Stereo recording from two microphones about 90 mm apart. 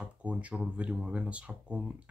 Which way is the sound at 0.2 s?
15° right (ahead or behind).